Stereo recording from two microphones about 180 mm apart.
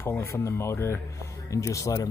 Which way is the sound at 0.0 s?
10° left (ahead or behind).